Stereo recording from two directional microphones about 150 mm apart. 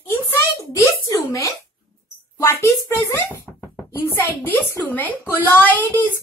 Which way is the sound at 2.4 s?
20° left (ahead or behind).